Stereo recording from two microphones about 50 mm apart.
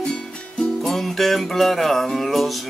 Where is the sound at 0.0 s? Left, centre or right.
Centre.